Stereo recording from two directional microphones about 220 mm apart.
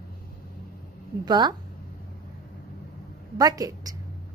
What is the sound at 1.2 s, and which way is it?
Speech, 20° right (ahead or behind).